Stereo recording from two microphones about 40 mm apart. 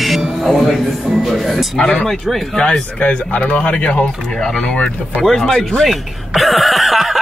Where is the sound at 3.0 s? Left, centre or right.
Left.